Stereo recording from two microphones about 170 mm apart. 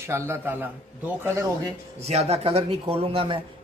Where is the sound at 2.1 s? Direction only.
35° right (ahead or behind).